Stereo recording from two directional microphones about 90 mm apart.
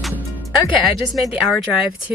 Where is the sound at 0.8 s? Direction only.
Centre (ahead or behind).